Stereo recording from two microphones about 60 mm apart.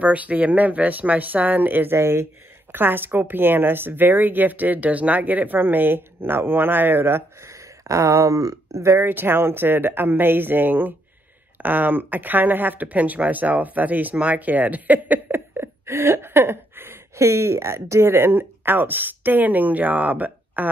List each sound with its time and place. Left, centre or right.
0.0 s speech: right
2.0 s speech: right
2.7 s a woman's voice: right
7.4 s a sound: right
8.8 s a woman's voice: right
15.5 s speech: right